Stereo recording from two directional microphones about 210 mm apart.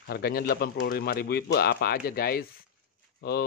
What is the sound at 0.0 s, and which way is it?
Speech, 50° left (ahead or behind).